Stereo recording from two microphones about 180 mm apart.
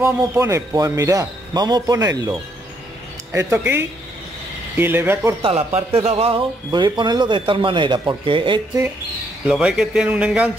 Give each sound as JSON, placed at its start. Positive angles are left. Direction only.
{"t": 0.0, "sound": "a man's voice", "side_deg": -15}
{"t": 3.3, "sound": "speech", "side_deg": -10}
{"t": 5.4, "sound": "a man's voice", "side_deg": -35}
{"t": 9.5, "sound": "a man's voice", "side_deg": -5}